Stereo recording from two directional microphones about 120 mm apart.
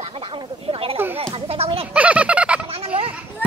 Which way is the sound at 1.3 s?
55° right (ahead or behind).